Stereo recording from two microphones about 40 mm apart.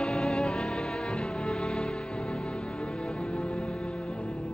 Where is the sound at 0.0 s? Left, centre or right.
Centre.